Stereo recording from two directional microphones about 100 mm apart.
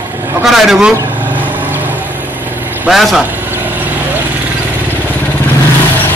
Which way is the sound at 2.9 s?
Centre (ahead or behind).